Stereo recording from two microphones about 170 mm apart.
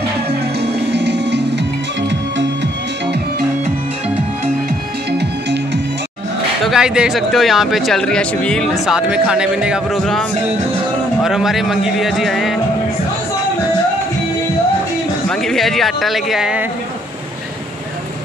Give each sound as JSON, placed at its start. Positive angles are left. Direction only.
{"t": 0.3, "sound": "music", "side_deg": -75}
{"t": 6.6, "sound": "speech", "side_deg": -5}
{"t": 11.2, "sound": "speech", "side_deg": 0}
{"t": 15.2, "sound": "speech", "side_deg": 0}